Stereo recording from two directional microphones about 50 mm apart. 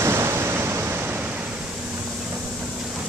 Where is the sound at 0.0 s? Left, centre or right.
Right.